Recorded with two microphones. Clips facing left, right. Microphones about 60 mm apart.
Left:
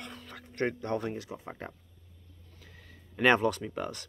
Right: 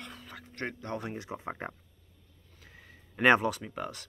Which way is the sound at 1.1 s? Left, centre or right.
Right.